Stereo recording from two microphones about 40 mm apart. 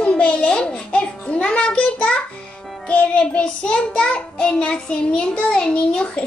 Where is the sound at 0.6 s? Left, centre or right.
Left.